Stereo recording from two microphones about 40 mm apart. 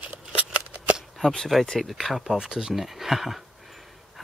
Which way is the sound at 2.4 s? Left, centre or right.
Centre.